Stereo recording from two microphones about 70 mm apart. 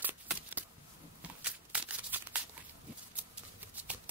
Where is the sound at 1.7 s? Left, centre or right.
Right.